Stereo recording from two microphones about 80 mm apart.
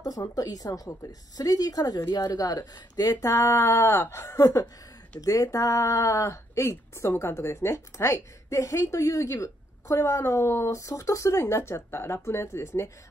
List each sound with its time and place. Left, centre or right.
0.0 s a woman's voice: left